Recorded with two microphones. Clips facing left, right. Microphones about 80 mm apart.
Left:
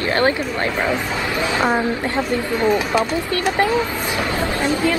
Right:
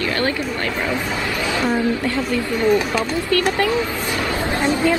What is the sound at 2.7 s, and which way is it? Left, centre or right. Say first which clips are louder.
Speech: left 1 dB; left.